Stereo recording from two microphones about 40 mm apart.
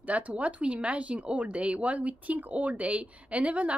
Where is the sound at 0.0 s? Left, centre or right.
Right.